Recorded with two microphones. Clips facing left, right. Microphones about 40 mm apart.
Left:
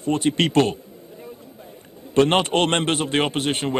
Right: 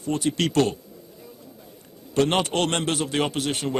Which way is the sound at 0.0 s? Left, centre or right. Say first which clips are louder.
Left 4 dB; left.